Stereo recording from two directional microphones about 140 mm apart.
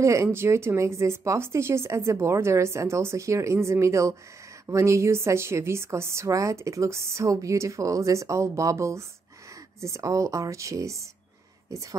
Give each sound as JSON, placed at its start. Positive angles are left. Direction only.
{"t": 0.0, "sound": "a woman's voice", "side_deg": -20}